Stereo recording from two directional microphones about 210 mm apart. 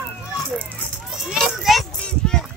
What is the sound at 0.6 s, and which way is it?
Children playing, centre (ahead or behind).